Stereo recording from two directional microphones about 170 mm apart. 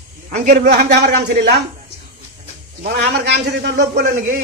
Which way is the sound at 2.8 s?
80° right.